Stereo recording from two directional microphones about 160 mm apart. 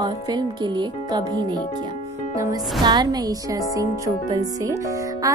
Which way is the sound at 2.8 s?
25° right (ahead or behind).